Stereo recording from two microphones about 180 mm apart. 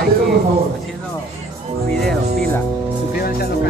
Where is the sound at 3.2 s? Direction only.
55° left (ahead or behind).